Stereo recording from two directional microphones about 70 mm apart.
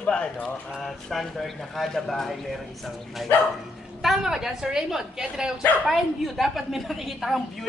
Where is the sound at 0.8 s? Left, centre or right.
Centre.